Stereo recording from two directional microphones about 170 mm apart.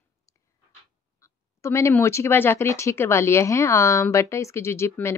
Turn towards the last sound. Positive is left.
turn(degrees=15)  # may be behind; listen again after turning